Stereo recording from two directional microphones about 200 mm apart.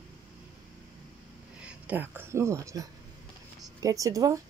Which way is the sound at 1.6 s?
5° right (ahead or behind).